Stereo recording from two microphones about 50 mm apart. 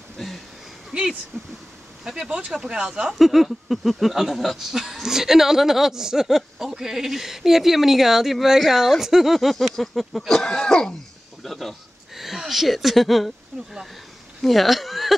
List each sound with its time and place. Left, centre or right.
1.3 s speech: centre
3.3 s goat: centre
11.4 s goat: centre
14.4 s speech: centre